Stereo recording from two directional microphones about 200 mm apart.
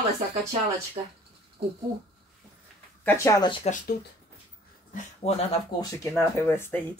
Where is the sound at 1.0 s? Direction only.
25° right (ahead or behind).